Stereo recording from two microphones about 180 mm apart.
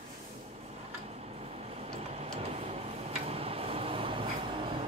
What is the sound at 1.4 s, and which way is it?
Tick-tock, 35° right (ahead or behind).